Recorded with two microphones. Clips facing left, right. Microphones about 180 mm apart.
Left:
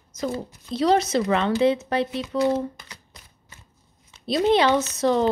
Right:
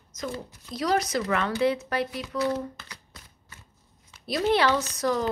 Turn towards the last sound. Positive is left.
turn(degrees=25)  # may be behind; listen again after turning